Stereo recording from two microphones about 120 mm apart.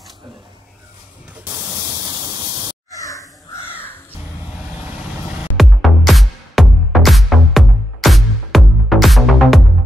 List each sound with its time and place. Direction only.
1.4 s spray: 15° right (ahead or behind); by 2.7 s 35° right (ahead or behind)
2.9 s a sound: 30° left (ahead or behind)
4.7 s vehicle: 10° right (ahead or behind)
5.6 s music: centre (ahead or behind)